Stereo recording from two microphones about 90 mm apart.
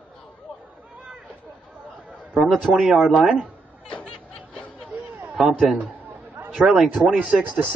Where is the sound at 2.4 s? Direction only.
5° right (ahead or behind).